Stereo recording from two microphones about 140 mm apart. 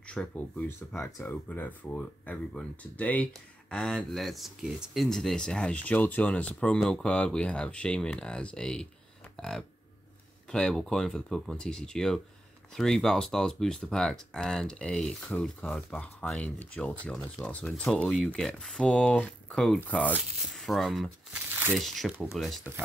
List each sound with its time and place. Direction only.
0.0 s speech: 10° left (ahead or behind)
21.5 s crumpling: 15° right (ahead or behind)
21.7 s speech: centre (ahead or behind)